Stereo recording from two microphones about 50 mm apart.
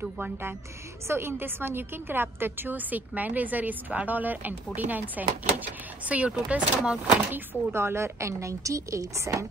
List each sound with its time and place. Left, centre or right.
1.0 s a woman's voice: right
7.7 s a woman's voice: right